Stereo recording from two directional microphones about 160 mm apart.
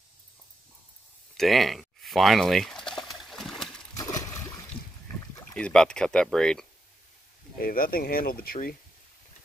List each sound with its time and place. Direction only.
1.3 s a sound: centre (ahead or behind)
3.9 s splash: 20° left (ahead or behind)
5.5 s speech: 5° left (ahead or behind)
7.6 s speech: 65° left (ahead or behind)